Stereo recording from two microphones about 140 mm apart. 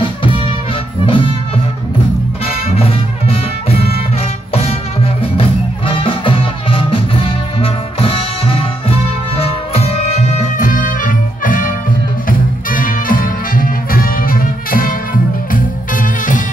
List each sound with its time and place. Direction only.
1.0 s music: 40° left (ahead or behind)
2.4 s music: 45° left (ahead or behind); by 11.7 s 75° left (ahead or behind)
12.3 s music: 85° left
15.5 s music: 70° left (ahead or behind)